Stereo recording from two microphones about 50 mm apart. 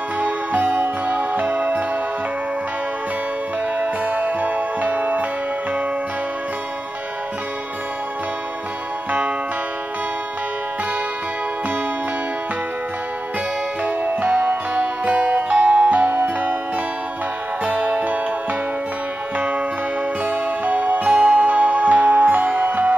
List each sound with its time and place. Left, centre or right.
0.2 s music: right
3.8 s music: right
13.8 s music: right
19.3 s music: right